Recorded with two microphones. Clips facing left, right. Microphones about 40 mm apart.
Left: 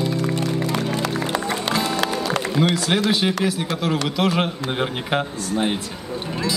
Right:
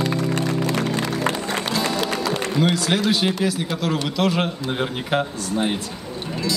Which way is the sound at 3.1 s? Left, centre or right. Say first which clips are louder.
Even; centre.